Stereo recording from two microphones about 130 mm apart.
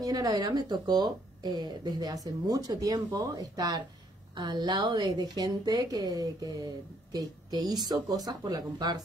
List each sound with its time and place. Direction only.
0.0 s a woman's voice: 30° right (ahead or behind)